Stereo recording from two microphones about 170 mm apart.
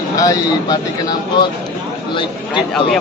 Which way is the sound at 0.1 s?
20° left (ahead or behind).